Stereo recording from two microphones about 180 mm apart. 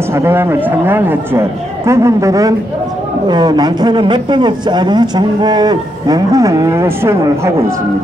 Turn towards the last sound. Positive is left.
turn(degrees=-15)  # may be behind; listen again after turning